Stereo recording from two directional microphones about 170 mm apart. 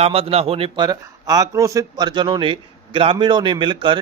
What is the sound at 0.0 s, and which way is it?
A man's voice, 35° right (ahead or behind).